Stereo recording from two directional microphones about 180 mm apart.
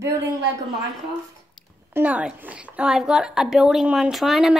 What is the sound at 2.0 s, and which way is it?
A woman's voice, 10° right (ahead or behind).